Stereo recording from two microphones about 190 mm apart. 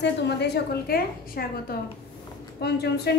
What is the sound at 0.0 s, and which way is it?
A woman's voice, 60° left (ahead or behind).